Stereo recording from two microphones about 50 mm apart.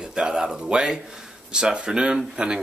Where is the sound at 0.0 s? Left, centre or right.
Centre.